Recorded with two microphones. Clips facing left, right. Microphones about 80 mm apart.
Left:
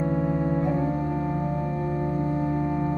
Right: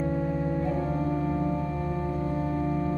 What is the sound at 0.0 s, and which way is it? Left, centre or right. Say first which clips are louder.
Music: left 3 dB; left.